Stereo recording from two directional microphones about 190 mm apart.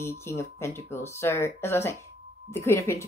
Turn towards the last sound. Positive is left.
turn(degrees=15)  # may be behind; listen again after turning